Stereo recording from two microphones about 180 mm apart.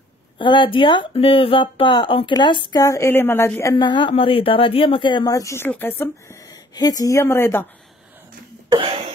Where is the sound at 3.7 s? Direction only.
25° left (ahead or behind).